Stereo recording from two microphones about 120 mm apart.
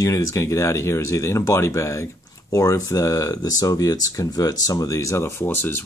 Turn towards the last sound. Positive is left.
turn(degrees=20)  # may be behind; listen again after turning